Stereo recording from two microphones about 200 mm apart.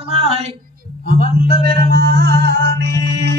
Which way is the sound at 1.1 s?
45° right (ahead or behind).